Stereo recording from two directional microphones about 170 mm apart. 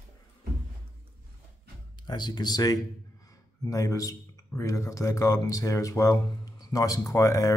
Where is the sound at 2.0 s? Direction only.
25° left (ahead or behind).